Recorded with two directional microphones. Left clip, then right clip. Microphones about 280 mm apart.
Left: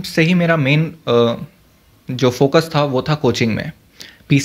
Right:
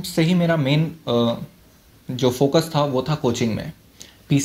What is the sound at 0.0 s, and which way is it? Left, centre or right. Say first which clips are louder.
Speech: left 5 dB; left.